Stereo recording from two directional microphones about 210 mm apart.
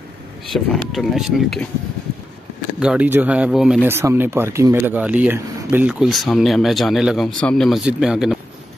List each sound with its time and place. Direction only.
0.5 s speech: centre (ahead or behind)
2.8 s speech: 5° right (ahead or behind)